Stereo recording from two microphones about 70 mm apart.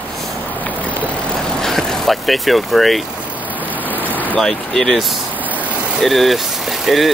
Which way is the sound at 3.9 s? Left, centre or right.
Right.